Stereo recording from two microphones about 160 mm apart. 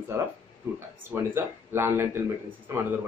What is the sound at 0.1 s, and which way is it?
A man's voice, 15° right (ahead or behind).